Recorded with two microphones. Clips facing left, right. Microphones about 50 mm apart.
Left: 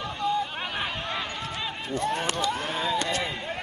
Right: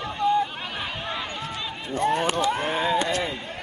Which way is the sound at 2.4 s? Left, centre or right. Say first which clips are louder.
Right 4 dB; centre.